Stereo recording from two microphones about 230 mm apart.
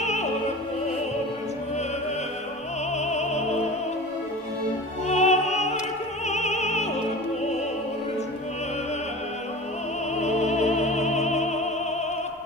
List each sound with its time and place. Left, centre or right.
0.0 s opera: left
3.0 s music: left
5.0 s music: left
6.2 s opera: left
10.1 s music: left